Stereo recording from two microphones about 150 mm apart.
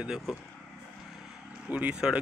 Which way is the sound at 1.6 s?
10° right (ahead or behind).